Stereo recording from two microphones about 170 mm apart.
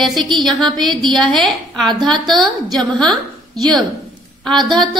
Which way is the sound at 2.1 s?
25° right (ahead or behind).